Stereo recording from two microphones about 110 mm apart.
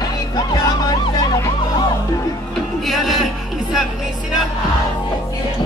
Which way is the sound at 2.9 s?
Centre (ahead or behind).